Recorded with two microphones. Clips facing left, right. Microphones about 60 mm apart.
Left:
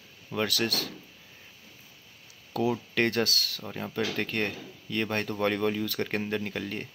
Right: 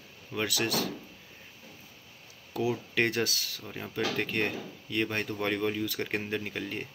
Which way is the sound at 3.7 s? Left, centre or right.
Centre.